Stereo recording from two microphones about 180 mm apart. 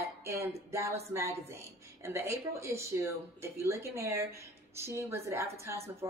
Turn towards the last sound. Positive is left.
turn(degrees=-15)  # may be behind; listen again after turning